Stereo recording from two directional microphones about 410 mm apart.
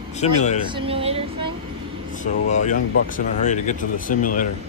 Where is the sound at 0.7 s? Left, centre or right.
Centre.